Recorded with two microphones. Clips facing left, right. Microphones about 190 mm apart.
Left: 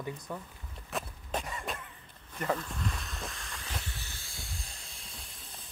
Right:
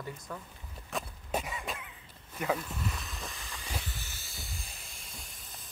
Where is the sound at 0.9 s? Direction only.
Centre (ahead or behind).